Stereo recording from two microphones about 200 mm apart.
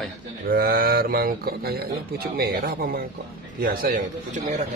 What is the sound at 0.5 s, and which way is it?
Speech, 45° right (ahead or behind).